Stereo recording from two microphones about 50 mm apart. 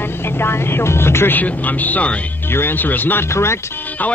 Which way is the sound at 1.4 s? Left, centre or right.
Left.